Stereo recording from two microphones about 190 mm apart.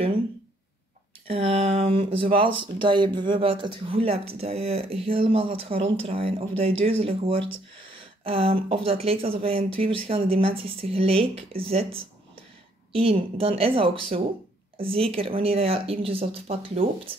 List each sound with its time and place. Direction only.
1.2 s speech: 30° right (ahead or behind)